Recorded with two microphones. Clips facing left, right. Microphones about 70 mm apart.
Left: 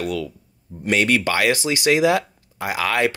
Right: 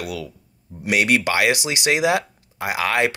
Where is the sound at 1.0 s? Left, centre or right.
Centre.